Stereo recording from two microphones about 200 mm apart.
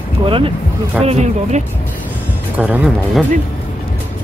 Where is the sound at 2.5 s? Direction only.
5° right (ahead or behind).